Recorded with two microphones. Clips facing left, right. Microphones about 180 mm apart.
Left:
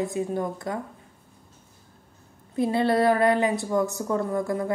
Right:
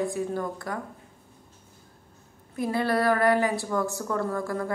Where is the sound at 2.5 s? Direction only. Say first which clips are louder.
Left 4 dB; 25° left (ahead or behind).